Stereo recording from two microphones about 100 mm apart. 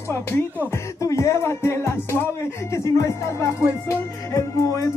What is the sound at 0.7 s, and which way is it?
Music, 30° left (ahead or behind).